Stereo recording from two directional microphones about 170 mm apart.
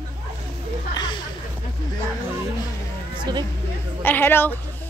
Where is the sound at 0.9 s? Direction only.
25° left (ahead or behind).